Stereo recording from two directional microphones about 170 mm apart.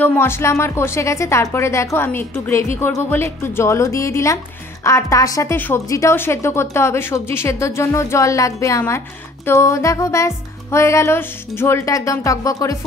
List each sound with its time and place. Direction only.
0.0 s speech: 15° left (ahead or behind)